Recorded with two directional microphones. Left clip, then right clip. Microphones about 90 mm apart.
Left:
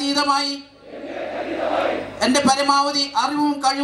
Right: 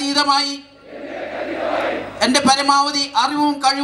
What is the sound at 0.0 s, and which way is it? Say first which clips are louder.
Speech: right 3 dB; 20° right (ahead or behind).